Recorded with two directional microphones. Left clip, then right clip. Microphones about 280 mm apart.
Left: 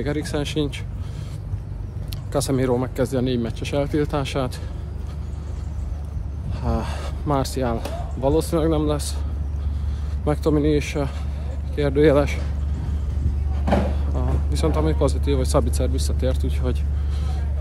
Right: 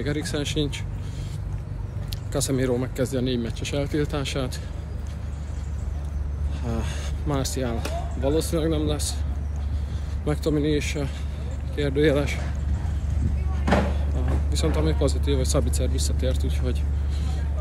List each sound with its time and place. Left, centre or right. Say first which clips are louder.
0.0 s speech: left 3 dB; centre
2.3 s speech: left 3 dB; centre
6.6 s speech: left 5 dB; centre
10.2 s speech: left 4 dB; centre
14.5 s speech: left 3 dB; centre